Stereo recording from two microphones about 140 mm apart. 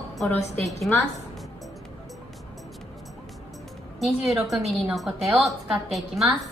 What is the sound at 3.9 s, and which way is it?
A woman's voice, centre (ahead or behind).